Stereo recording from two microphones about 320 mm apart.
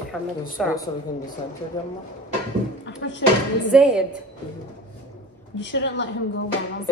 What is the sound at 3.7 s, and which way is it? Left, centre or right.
Speech, centre.